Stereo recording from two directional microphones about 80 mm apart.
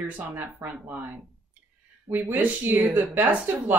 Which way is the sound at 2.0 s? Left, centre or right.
Right.